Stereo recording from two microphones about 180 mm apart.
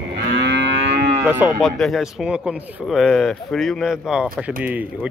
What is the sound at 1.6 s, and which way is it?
Speech, centre (ahead or behind).